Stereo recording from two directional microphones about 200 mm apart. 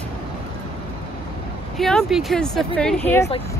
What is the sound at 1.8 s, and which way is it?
Speech, centre (ahead or behind).